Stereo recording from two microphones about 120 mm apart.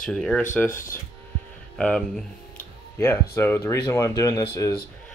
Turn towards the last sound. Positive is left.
turn(degrees=25)  # may be behind; listen again after turning